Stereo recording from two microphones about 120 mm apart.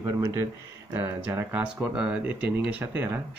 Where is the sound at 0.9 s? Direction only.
15° right (ahead or behind).